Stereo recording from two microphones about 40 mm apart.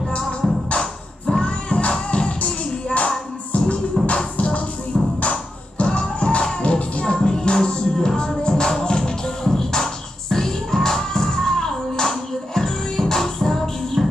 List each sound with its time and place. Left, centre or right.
0.7 s music: left
1.7 s music: left
5.2 s music: left
7.2 s music: centre